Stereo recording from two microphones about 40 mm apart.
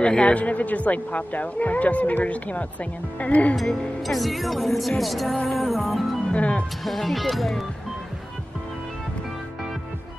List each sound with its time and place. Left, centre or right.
0.0 s speech: left
4.0 s speech: centre
5.5 s music: centre
6.3 s speech: left
6.8 s speech: centre